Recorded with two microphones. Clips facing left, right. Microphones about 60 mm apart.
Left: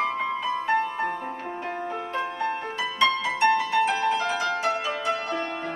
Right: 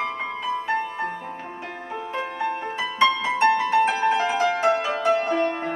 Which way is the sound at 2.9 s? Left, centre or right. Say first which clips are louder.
Right 3 dB; right.